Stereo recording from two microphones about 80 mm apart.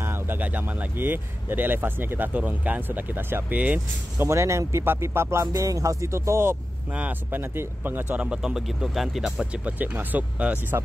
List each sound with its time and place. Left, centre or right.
0.0 s speech: right
4.2 s speech: right
5.5 s speech: right
6.9 s speech: centre
8.3 s speech: centre